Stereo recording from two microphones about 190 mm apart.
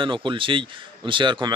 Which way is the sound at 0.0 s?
25° right (ahead or behind).